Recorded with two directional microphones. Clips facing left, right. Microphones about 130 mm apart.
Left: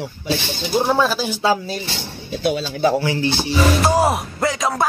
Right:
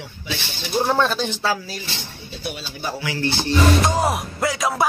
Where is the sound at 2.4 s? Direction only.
90° left.